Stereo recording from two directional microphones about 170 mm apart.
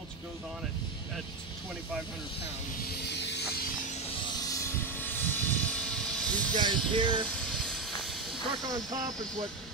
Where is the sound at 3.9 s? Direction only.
35° left (ahead or behind).